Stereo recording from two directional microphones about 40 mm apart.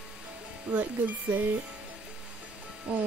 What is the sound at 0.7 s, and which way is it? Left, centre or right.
Chime, right.